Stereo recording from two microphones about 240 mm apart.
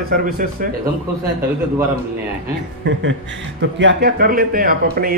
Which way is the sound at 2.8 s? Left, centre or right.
Right.